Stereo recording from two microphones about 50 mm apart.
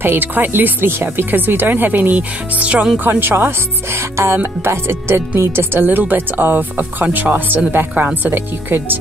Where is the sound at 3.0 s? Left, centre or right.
Right.